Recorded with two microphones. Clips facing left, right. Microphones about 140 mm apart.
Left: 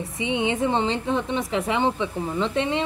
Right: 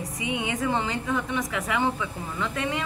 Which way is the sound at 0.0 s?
25° left (ahead or behind).